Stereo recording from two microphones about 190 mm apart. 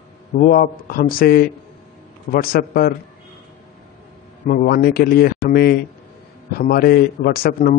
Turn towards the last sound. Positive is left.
turn(degrees=50)  # may be behind; listen again after turning